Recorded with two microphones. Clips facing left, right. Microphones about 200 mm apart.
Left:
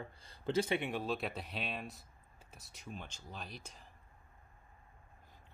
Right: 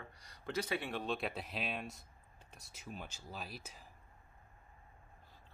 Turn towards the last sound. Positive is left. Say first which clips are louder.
# right 1 dB
turn(degrees=-5)  # may be behind; listen again after turning